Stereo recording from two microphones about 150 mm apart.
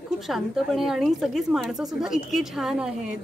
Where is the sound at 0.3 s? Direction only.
Centre (ahead or behind).